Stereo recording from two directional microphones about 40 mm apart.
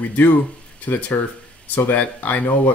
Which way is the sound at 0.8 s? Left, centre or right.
Left.